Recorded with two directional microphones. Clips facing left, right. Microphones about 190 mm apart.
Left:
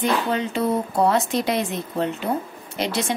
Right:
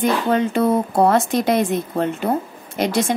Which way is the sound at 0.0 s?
50° right (ahead or behind).